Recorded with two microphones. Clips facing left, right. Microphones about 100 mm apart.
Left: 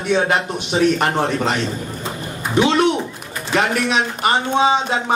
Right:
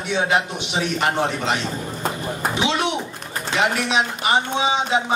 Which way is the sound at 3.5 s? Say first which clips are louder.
Left 3 dB; 50° left (ahead or behind).